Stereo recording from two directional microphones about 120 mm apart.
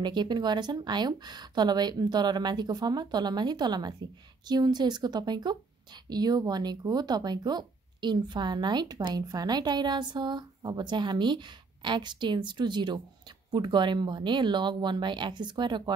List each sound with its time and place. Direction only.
0.0 s speech: 40° right (ahead or behind)